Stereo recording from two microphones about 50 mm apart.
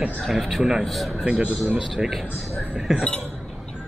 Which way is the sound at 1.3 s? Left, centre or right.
Centre.